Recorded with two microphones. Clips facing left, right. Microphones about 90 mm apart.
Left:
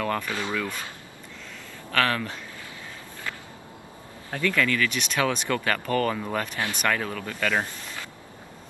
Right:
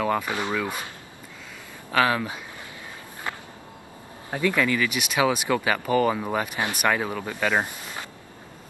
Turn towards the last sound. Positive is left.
turn(degrees=-15)  # may be behind; listen again after turning